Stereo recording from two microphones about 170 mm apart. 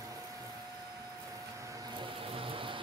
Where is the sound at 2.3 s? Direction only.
30° right (ahead or behind).